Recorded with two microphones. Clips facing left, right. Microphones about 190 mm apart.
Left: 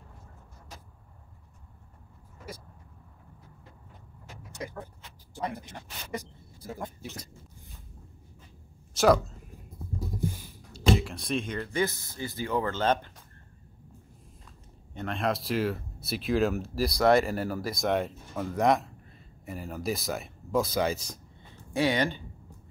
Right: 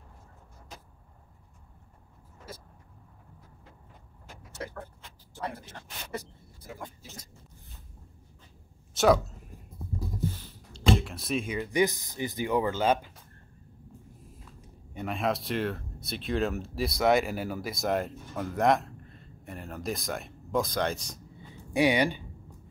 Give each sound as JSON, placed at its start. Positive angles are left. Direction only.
{"t": 4.5, "sound": "vehicle", "side_deg": 15}
{"t": 5.3, "sound": "speech", "side_deg": 15}
{"t": 7.0, "sound": "speech", "side_deg": 65}
{"t": 8.9, "sound": "speech", "side_deg": 0}
{"t": 10.2, "sound": "speech", "side_deg": 10}
{"t": 15.0, "sound": "speech", "side_deg": -5}
{"t": 21.4, "sound": "a sound", "side_deg": -15}